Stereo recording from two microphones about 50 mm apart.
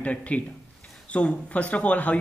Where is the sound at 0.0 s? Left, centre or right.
Left.